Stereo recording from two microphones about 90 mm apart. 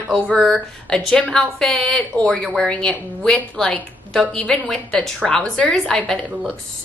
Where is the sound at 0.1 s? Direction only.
10° left (ahead or behind).